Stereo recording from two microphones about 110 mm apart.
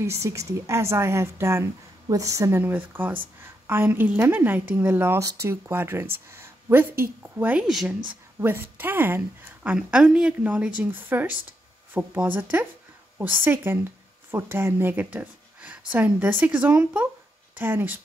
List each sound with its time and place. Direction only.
0.0 s a woman's voice: 25° right (ahead or behind)
5.2 s speech: 35° right (ahead or behind)
5.5 s a woman's voice: 20° right (ahead or behind)
7.6 s speech: 5° right (ahead or behind)
8.1 s a woman's voice: 20° right (ahead or behind)